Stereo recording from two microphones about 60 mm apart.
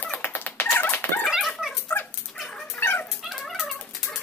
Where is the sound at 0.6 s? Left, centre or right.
Left.